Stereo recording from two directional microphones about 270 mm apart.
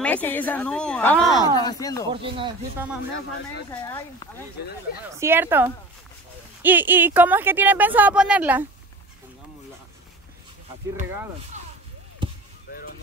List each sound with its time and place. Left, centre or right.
0.0 s a woman's voice: centre
1.6 s speech: centre
2.0 s speech: centre
3.8 s speech: centre
5.2 s speech: centre
12.7 s a sound: left